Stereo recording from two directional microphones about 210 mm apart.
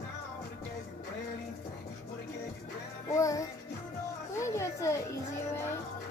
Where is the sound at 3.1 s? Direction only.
15° left (ahead or behind).